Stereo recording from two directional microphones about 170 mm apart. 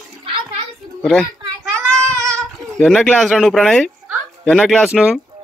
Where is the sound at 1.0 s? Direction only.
Centre (ahead or behind).